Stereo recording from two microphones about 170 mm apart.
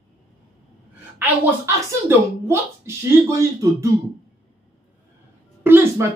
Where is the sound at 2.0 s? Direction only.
15° right (ahead or behind).